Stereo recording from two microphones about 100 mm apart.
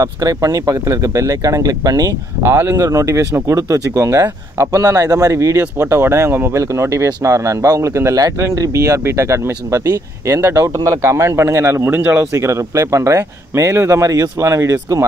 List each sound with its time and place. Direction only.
0.0 s speech: 35° right (ahead or behind)
2.4 s speech: 25° right (ahead or behind)
12.4 s speech: 30° right (ahead or behind)